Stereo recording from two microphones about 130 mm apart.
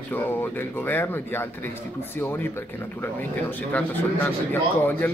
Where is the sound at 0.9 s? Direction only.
15° left (ahead or behind).